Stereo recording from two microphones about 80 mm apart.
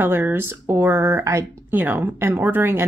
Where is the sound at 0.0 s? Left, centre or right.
Right.